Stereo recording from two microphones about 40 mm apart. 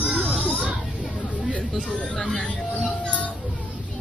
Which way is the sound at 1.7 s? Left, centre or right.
Centre.